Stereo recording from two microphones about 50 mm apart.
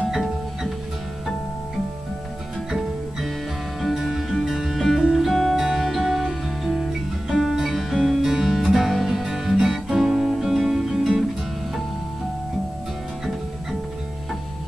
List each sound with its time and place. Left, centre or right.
3.8 s music: centre